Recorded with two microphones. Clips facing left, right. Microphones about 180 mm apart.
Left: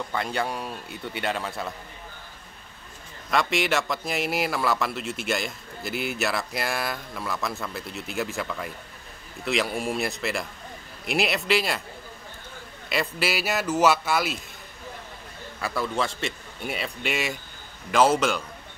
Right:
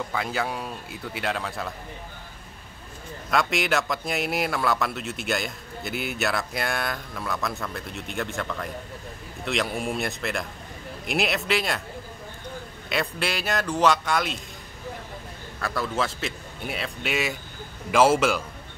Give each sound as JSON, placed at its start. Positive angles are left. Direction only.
{"t": 0.1, "sound": "a man's voice", "side_deg": 0}
{"t": 3.3, "sound": "a man's voice", "side_deg": 0}
{"t": 12.9, "sound": "a man's voice", "side_deg": 5}
{"t": 15.6, "sound": "a man's voice", "side_deg": 0}